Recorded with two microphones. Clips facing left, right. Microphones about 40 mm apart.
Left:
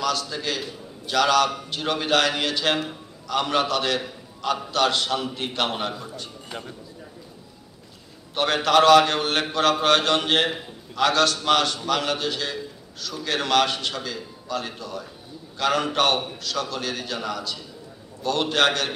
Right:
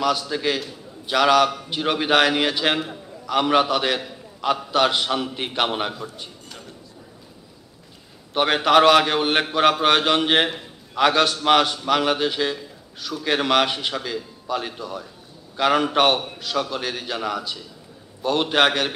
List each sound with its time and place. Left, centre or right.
0.0 s a man's voice: centre
8.4 s a man's voice: centre